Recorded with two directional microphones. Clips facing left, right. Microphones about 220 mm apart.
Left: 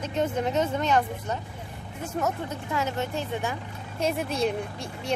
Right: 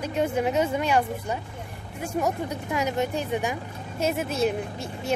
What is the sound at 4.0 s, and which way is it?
Speech, 5° right (ahead or behind).